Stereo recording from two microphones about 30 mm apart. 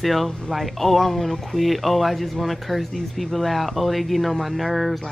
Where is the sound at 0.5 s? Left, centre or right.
Centre.